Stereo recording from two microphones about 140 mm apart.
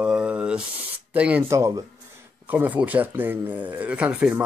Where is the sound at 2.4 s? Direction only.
10° right (ahead or behind).